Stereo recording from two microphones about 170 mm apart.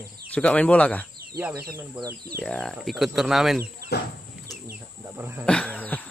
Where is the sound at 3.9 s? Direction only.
75° left (ahead or behind).